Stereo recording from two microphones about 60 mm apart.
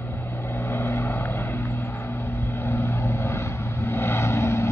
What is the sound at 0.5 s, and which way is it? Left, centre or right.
Vehicle, left.